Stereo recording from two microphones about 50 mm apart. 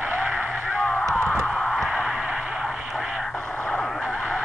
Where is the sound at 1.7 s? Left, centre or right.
Centre.